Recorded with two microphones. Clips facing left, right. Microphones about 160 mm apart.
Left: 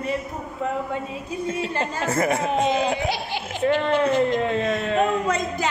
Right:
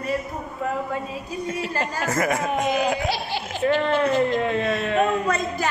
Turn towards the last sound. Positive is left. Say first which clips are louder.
# even
turn(degrees=20)  # may be behind; listen again after turning